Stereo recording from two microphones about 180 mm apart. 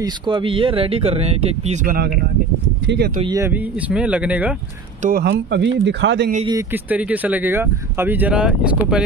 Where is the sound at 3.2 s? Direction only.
20° right (ahead or behind).